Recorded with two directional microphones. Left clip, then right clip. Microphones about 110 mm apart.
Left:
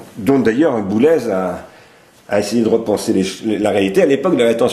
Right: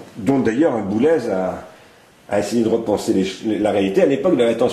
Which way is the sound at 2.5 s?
50° left (ahead or behind).